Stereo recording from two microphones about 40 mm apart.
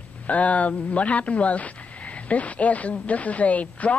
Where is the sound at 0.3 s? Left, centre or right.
Left.